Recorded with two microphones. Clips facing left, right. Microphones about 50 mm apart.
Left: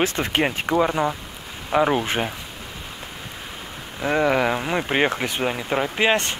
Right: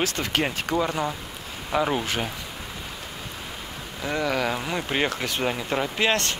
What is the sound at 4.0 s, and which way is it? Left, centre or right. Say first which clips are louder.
Speech: left 6 dB; left.